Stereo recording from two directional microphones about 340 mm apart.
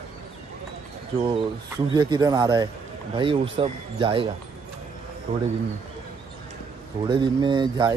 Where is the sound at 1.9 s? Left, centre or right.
Centre.